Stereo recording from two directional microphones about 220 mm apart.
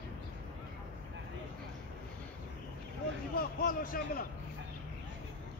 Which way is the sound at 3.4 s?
40° left (ahead or behind).